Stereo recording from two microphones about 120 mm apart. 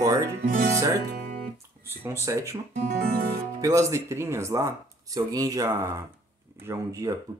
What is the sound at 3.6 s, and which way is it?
Speech, 25° right (ahead or behind).